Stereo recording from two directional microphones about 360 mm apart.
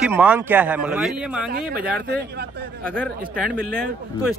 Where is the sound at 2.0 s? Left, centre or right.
Right.